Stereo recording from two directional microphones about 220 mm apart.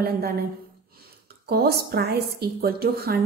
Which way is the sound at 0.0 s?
45° right (ahead or behind).